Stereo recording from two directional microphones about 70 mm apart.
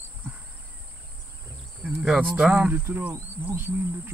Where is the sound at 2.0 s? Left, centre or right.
Centre.